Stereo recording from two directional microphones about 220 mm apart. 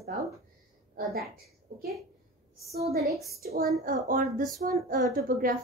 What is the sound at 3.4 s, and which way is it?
A woman's voice, 45° right (ahead or behind).